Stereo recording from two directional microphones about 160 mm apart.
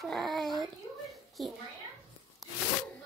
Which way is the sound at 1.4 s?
Centre (ahead or behind).